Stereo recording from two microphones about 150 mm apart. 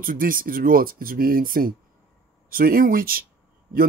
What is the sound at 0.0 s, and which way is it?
Speech, 70° right (ahead or behind).